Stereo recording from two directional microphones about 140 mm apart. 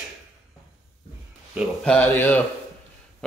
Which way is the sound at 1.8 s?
10° left (ahead or behind).